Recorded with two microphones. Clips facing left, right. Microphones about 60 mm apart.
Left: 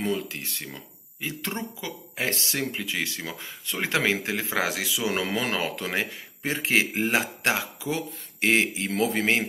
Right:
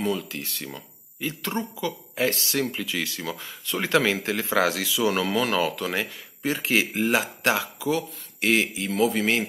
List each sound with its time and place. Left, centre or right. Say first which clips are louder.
0.0 s speech: right 1 dB; left